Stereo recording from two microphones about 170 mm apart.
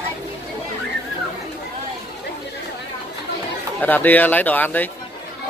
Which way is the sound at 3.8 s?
10° left (ahead or behind).